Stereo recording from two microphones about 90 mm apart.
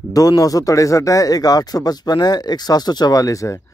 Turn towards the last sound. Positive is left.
turn(degrees=35)  # may be behind; listen again after turning